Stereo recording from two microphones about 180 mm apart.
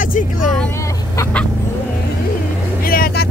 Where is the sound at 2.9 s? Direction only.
55° left (ahead or behind).